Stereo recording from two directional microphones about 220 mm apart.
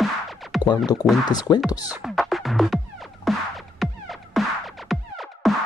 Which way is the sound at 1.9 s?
5° right (ahead or behind).